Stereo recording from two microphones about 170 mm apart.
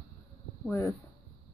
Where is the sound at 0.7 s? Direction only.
15° left (ahead or behind).